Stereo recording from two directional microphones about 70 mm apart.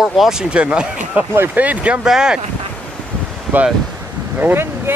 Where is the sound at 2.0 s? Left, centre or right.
Centre.